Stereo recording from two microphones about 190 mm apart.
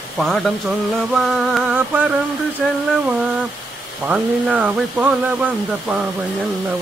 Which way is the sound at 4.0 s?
5° right (ahead or behind).